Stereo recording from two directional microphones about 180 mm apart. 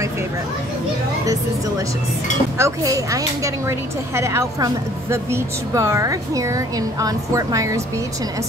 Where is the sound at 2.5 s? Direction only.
15° right (ahead or behind).